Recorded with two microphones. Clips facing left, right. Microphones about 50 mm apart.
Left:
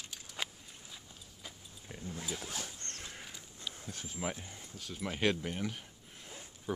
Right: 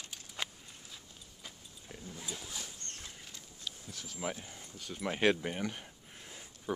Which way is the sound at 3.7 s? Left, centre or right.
Left.